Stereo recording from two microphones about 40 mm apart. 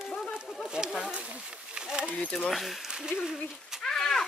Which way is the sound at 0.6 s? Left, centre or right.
Right.